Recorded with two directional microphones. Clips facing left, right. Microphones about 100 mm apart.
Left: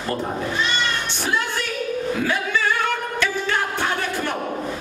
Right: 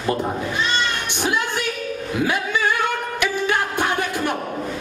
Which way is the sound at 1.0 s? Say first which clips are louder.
Right 2 dB; 15° right (ahead or behind).